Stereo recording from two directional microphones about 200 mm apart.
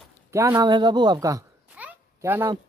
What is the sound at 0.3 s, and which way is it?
Speech, 15° right (ahead or behind).